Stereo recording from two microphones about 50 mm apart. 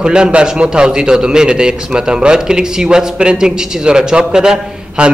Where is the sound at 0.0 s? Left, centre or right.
Centre.